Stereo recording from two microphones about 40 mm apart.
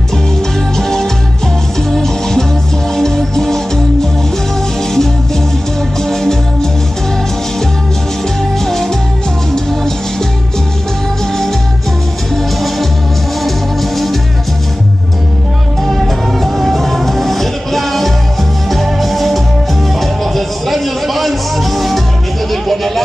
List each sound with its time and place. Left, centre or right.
0.7 s music: centre
8.6 s music: centre
15.9 s music: centre
22.5 s a sound: centre